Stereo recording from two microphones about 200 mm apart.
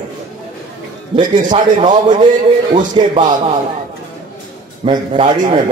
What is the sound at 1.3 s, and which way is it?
Speech, 40° right (ahead or behind).